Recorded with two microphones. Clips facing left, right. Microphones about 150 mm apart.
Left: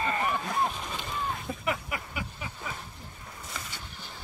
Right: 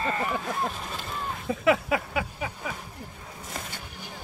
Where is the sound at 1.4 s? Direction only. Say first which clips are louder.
Right 9 dB; 90° right.